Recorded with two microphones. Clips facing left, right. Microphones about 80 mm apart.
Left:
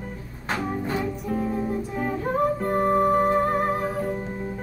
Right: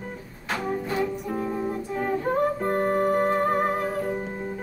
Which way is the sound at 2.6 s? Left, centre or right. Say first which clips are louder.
Left 2 dB; centre.